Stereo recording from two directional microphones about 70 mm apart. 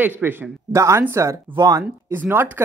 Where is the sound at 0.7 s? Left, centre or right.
Right.